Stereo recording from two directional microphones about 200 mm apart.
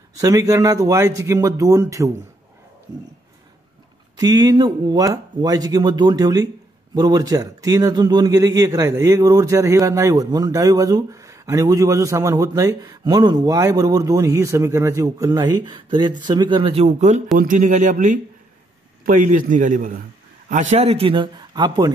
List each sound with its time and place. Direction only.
0.2 s a man's voice: 15° right (ahead or behind)
4.2 s a man's voice: 20° right (ahead or behind)